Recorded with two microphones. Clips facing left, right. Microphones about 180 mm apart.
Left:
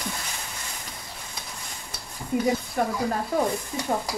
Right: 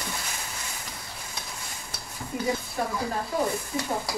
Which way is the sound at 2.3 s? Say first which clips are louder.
Left 7 dB; 65° left (ahead or behind).